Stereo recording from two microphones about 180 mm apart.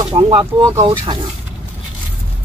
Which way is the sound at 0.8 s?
30° right (ahead or behind).